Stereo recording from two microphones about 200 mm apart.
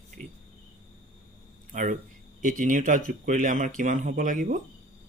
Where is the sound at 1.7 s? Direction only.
40° right (ahead or behind).